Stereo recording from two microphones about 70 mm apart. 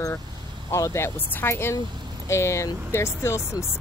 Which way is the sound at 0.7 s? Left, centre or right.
Left.